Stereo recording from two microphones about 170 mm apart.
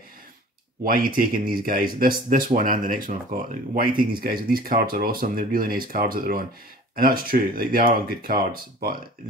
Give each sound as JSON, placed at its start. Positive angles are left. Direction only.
{"t": 0.8, "sound": "speech", "side_deg": -55}